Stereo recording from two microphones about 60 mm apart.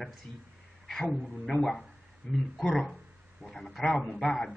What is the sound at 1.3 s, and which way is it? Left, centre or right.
Speech, centre.